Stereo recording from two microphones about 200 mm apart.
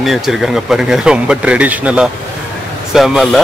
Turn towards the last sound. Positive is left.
turn(degrees=0)  # may be behind; listen again after turning